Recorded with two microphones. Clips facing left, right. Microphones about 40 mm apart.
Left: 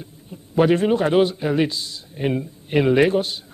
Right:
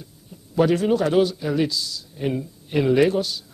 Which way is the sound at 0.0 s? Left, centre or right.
Left.